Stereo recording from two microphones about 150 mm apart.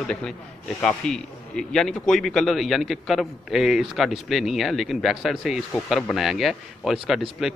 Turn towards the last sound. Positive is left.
turn(degrees=0)  # may be behind; listen again after turning